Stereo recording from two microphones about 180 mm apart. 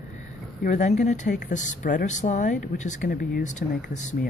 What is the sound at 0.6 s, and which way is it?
Speech, 40° left (ahead or behind).